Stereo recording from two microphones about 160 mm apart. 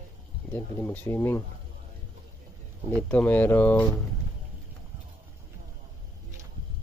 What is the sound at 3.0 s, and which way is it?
Speech, 10° left (ahead or behind).